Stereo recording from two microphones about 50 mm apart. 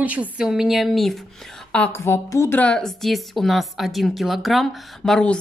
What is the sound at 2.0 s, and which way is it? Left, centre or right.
Speech, left.